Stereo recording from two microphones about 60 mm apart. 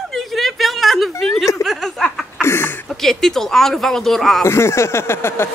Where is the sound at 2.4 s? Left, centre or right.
Left.